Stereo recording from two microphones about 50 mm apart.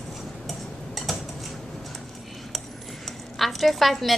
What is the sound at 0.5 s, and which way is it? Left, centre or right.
Tick-tock, centre.